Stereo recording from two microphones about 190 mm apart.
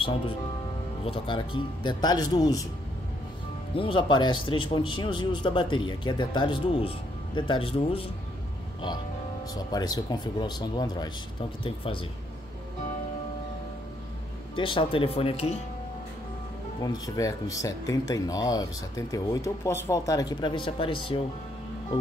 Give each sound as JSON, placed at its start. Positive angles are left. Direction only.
{"t": 1.0, "sound": "speech", "side_deg": 25}
{"t": 3.7, "sound": "speech", "side_deg": 30}
{"t": 9.7, "sound": "speech", "side_deg": 20}
{"t": 14.5, "sound": "speech", "side_deg": 25}
{"t": 16.8, "sound": "speech", "side_deg": 20}